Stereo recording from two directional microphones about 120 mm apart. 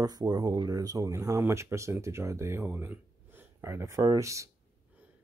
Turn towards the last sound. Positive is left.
turn(degrees=-25)  # may be behind; listen again after turning